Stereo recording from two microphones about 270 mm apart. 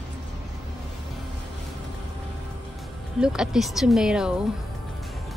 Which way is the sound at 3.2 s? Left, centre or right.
Centre.